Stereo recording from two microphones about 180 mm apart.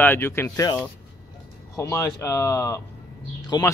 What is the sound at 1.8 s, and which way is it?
Speech, 15° left (ahead or behind).